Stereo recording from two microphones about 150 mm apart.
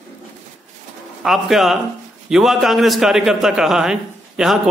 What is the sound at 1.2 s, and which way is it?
A man's voice, centre (ahead or behind).